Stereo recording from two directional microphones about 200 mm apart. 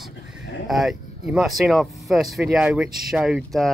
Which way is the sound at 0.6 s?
Centre (ahead or behind).